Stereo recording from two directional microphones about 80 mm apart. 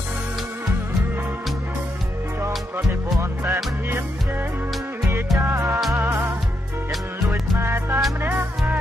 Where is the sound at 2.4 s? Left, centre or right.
Right.